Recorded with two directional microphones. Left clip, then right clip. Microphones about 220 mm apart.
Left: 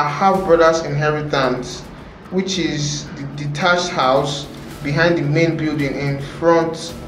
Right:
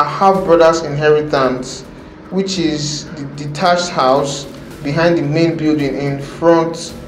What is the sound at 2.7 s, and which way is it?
Speech, 35° left (ahead or behind).